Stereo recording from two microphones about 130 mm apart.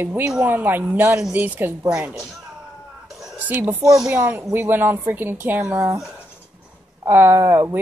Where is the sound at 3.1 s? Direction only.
5° right (ahead or behind).